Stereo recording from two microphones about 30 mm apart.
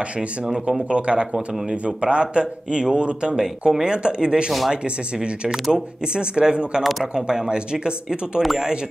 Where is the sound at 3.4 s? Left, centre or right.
Centre.